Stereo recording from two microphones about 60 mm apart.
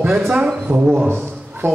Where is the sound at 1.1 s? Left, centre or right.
Right.